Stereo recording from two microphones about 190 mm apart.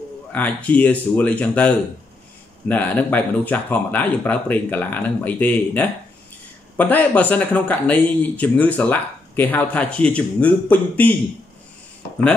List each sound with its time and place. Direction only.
0.3 s speech: 10° left (ahead or behind)